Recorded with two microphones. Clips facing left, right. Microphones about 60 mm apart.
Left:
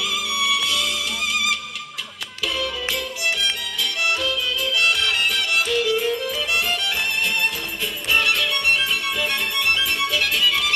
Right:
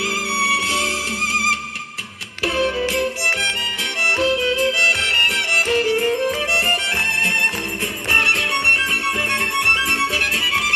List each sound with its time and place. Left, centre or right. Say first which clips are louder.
0.0 s music: right 4 dB; right